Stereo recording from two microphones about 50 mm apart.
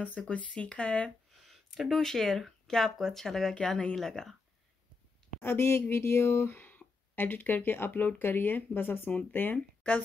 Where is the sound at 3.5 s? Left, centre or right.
Centre.